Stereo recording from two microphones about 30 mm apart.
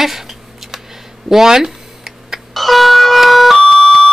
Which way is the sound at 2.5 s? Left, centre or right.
Centre.